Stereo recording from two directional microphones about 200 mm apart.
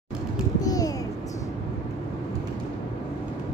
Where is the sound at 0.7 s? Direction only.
20° left (ahead or behind).